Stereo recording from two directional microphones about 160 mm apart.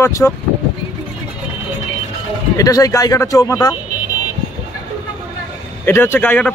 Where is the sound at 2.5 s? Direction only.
20° left (ahead or behind).